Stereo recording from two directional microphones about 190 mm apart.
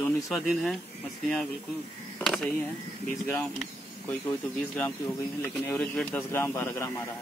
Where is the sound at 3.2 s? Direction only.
10° left (ahead or behind).